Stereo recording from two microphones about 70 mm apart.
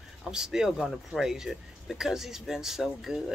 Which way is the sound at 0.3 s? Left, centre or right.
Centre.